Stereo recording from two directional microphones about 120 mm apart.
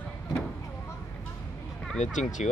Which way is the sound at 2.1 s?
90° left.